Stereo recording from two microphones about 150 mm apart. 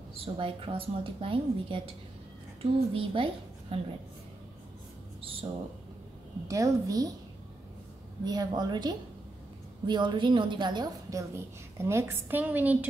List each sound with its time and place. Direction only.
0.2 s a woman's voice: 35° right (ahead or behind)
6.4 s a woman's voice: 20° right (ahead or behind)
8.2 s a woman's voice: 25° right (ahead or behind); by 12.7 s 10° right (ahead or behind)